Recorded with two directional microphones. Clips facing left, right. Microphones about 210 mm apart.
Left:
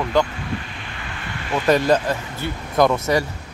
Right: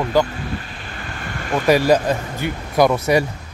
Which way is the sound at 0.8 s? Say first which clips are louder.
Right 2 dB; 45° right (ahead or behind).